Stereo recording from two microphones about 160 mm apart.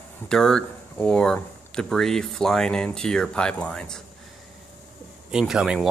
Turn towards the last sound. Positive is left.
turn(degrees=-5)  # may be behind; listen again after turning